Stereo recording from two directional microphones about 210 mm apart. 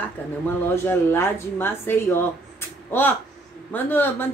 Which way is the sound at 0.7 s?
10° left (ahead or behind).